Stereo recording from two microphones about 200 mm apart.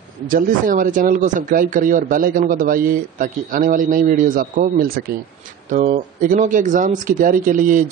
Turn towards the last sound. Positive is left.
turn(degrees=-40)  # may be behind; listen again after turning